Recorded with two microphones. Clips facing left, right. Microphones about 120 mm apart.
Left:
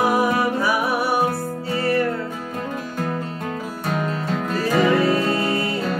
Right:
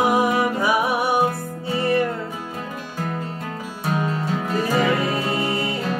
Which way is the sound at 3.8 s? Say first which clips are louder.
Right 2 dB; 5° right (ahead or behind).